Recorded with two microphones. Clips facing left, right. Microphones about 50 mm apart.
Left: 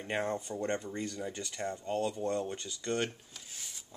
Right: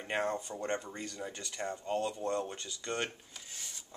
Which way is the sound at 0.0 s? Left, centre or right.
Centre.